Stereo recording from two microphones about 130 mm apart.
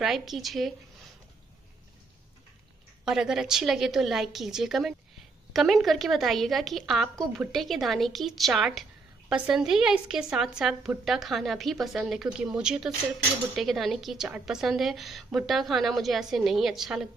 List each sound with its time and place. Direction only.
0.0 s a woman's voice: centre (ahead or behind)
3.1 s a woman's voice: 5° right (ahead or behind)